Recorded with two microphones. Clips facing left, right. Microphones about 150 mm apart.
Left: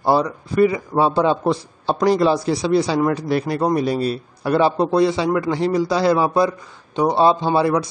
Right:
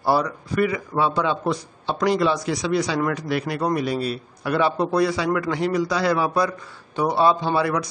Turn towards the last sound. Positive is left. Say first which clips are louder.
# left 4 dB
turn(degrees=25)  # may be behind; listen again after turning